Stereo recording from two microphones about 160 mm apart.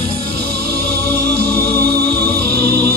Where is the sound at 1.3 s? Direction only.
55° left (ahead or behind).